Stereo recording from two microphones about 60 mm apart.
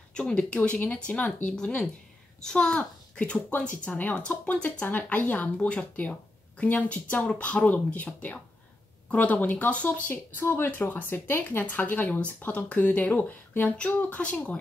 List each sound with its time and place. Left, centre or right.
0.1 s a child's voice: centre